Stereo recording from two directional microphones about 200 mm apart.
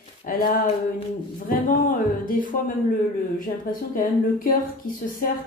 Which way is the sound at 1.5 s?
45° left (ahead or behind).